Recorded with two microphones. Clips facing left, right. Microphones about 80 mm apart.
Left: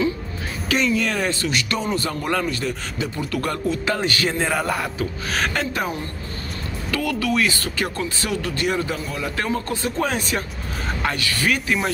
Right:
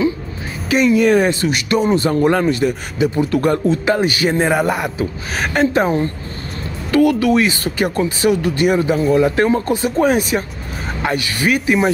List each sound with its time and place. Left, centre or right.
0.7 s speech: centre
5.6 s speech: right
6.9 s speech: right